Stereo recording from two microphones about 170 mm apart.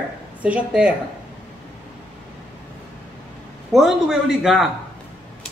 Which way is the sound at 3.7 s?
Centre (ahead or behind).